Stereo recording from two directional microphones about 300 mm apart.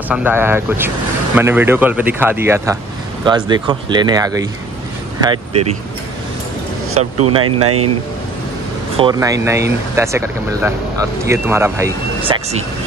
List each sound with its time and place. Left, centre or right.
0.1 s speech: centre
7.4 s speech: right
8.9 s speech: centre